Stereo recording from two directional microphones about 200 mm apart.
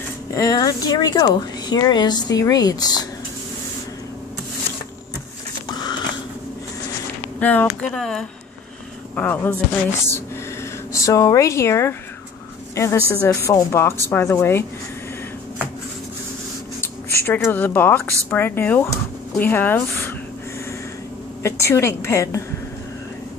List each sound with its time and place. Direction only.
0.3 s speech: 15° left (ahead or behind)
7.3 s speech: 10° left (ahead or behind)
10.9 s speech: 15° left (ahead or behind)
16.8 s speech: 10° left (ahead or behind)
21.4 s speech: 15° left (ahead or behind)